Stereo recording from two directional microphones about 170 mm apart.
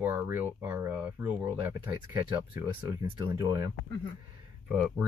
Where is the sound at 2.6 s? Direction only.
20° right (ahead or behind).